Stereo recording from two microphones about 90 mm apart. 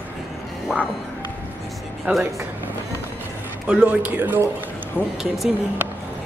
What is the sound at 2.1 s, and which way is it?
Speech, 20° right (ahead or behind).